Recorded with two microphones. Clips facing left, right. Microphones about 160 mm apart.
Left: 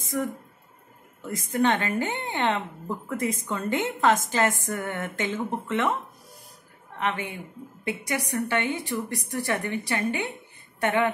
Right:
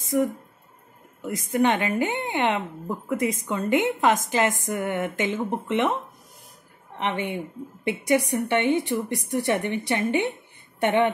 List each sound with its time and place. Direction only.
0.0 s a woman's voice: 15° right (ahead or behind)
7.0 s a woman's voice: 20° right (ahead or behind)